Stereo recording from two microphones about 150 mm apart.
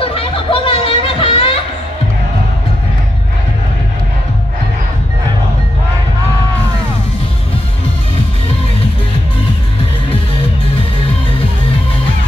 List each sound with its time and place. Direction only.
0.0 s chatter: 40° left (ahead or behind)